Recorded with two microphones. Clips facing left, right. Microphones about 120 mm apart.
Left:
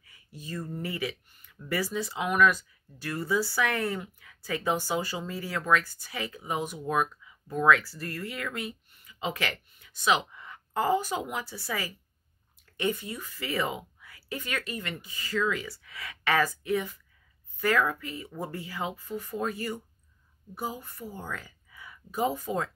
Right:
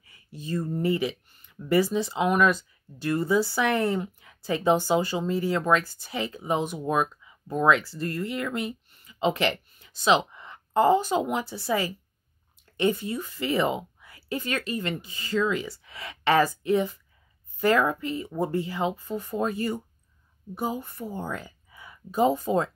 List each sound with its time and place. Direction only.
0.3 s a woman's voice: 25° right (ahead or behind)